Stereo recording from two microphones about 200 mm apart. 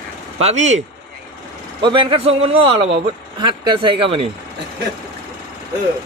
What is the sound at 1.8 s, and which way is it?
A man's voice, 25° right (ahead or behind).